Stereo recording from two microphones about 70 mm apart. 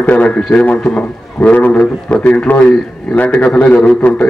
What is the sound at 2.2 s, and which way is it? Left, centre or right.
A man's voice, left.